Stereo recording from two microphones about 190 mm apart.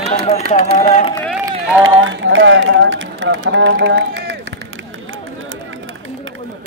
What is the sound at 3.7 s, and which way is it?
Run, 70° right (ahead or behind).